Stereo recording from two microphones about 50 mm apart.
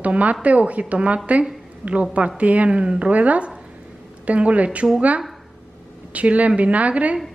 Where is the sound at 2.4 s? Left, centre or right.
Right.